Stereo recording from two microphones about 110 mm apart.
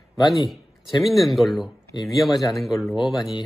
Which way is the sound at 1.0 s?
Centre (ahead or behind).